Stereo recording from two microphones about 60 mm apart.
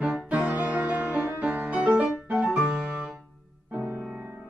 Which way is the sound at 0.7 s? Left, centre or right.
Right.